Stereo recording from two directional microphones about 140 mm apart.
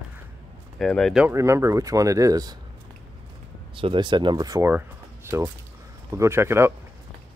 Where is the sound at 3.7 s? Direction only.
35° right (ahead or behind); by 6.7 s 20° right (ahead or behind).